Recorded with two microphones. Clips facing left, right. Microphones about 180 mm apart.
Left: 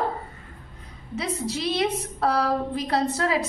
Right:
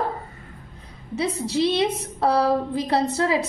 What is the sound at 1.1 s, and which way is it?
A woman's voice, 25° right (ahead or behind).